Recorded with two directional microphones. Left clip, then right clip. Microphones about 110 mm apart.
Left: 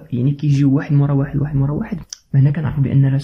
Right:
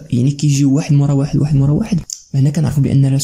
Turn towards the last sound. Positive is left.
turn(degrees=-30)  # may be behind; listen again after turning